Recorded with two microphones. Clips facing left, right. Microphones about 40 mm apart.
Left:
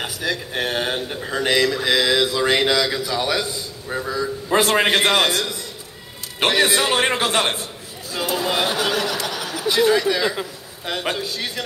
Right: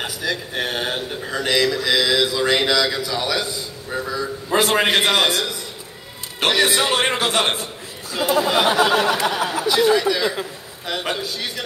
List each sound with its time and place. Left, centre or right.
0.0 s a sound: centre
1.4 s mantra: centre
2.4 s a man's voice: centre
6.6 s a man's voice: centre
8.2 s speech: centre
8.5 s speech: right
9.8 s a man's voice: centre